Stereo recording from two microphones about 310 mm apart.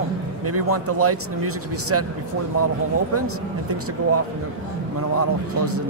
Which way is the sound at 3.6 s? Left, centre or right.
Right.